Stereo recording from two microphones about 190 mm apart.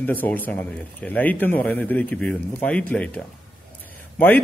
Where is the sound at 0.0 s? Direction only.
10° left (ahead or behind).